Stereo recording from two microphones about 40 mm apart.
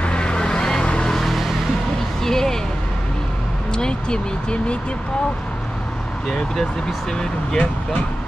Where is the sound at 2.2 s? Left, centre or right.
Centre.